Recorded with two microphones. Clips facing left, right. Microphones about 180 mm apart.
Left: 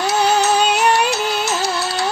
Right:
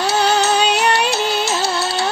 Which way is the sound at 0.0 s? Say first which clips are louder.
Even; 30° right (ahead or behind).